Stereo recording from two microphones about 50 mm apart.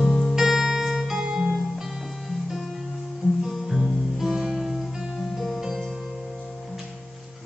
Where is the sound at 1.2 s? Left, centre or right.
Centre.